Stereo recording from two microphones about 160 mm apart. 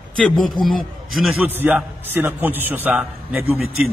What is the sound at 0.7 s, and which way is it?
Speech, centre (ahead or behind).